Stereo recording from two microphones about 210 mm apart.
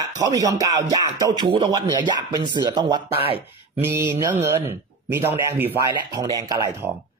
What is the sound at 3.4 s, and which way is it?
A man's voice, 10° right (ahead or behind).